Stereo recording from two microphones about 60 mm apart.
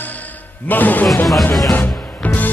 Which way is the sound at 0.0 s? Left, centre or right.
Left.